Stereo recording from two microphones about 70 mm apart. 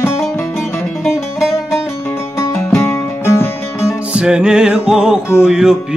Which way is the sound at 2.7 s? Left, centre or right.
Left.